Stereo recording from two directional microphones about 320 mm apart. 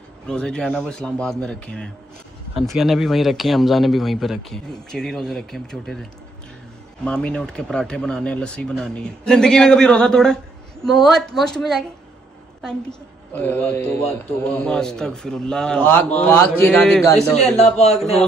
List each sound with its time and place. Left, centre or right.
0.3 s a man's voice: centre
7.1 s a man's voice: centre
13.3 s a man's voice: centre
17.6 s a man's voice: centre